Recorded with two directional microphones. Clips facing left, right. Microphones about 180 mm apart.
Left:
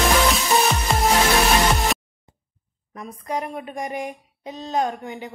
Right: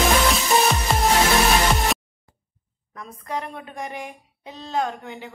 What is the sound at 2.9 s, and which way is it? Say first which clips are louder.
Speech: left 3 dB; 15° left (ahead or behind).